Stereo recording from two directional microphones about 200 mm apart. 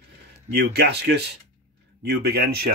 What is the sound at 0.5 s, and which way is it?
Speech, 55° right (ahead or behind).